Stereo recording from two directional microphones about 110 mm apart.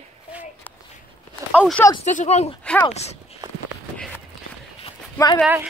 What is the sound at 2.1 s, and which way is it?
Speech, 85° left.